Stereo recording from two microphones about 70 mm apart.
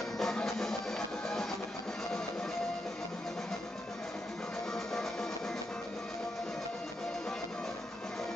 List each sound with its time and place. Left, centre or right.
0.2 s music: centre